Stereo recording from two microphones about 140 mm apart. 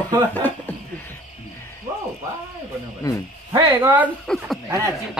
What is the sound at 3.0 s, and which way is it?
Speech, 25° left (ahead or behind).